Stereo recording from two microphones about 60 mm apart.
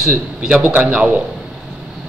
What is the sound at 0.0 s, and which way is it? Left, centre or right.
A man's voice, centre.